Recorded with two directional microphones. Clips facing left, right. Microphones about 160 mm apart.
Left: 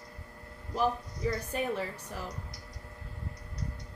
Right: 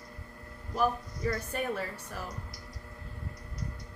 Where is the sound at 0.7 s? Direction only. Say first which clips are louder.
Even; 20° left (ahead or behind).